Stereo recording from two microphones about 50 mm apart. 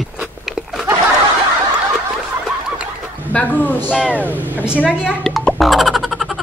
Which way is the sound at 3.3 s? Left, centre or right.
Left.